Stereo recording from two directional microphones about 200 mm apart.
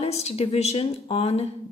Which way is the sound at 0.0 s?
30° left (ahead or behind).